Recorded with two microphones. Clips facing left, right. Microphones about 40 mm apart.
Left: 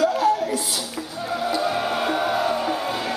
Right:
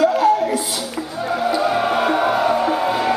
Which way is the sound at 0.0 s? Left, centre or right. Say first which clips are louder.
Right 5 dB; centre.